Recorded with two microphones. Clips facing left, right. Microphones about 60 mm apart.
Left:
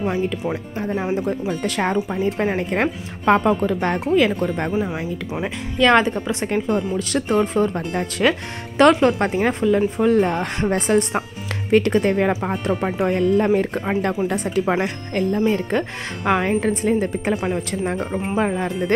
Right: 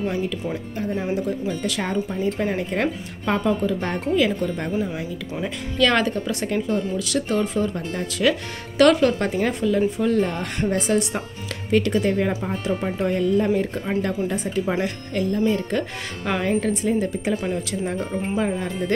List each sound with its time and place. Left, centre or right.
0.7 s a woman's voice: left
2.0 s speech: centre
2.3 s a woman's voice: left
5.8 s a woman's voice: left
14.8 s a woman's voice: left